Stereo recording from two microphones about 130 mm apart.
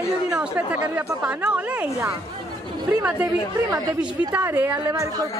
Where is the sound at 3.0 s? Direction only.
10° right (ahead or behind).